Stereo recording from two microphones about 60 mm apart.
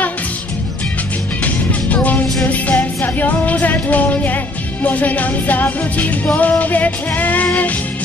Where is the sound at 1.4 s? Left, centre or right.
Left.